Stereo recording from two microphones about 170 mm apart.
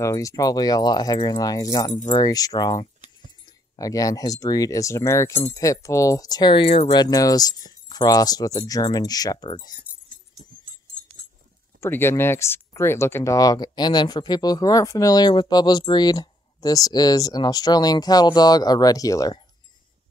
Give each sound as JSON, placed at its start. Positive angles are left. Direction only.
{"t": 0.0, "sound": "speech", "side_deg": 20}
{"t": 7.0, "sound": "speech", "side_deg": 20}
{"t": 11.8, "sound": "speech", "side_deg": 15}